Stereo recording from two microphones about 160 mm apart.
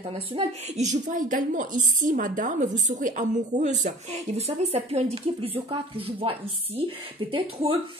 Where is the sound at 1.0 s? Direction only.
55° right (ahead or behind).